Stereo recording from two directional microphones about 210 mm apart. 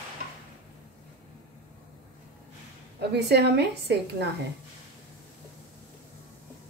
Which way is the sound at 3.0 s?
50° right (ahead or behind).